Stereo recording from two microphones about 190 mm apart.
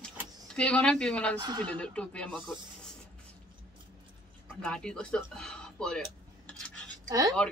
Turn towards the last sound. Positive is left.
turn(degrees=-20)  # may be behind; listen again after turning